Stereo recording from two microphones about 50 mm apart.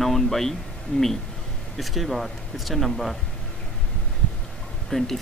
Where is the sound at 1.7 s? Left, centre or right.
Centre.